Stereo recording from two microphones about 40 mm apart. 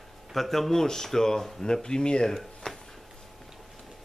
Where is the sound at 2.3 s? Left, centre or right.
Centre.